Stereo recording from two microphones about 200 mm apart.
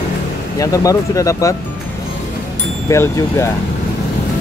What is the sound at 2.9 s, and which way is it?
Speech, 15° left (ahead or behind).